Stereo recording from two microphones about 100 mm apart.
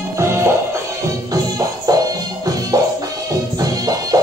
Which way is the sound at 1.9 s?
35° right (ahead or behind).